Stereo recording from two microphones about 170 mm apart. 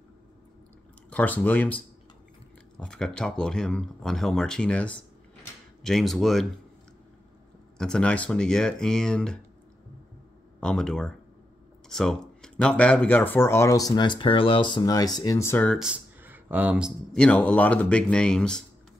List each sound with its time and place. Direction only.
1.1 s speech: 10° left (ahead or behind)
2.8 s speech: 5° left (ahead or behind)
7.7 s speech: 5° left (ahead or behind)
10.6 s speech: 5° left (ahead or behind)
15.8 s speech: 10° right (ahead or behind)
17.2 s speech: 10° left (ahead or behind)